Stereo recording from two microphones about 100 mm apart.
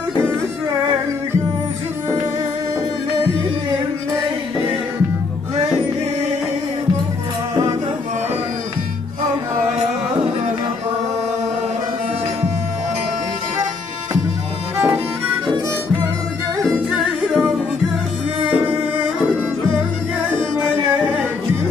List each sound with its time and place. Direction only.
14.8 s music: 25° right (ahead or behind)
16.7 s music: 5° right (ahead or behind)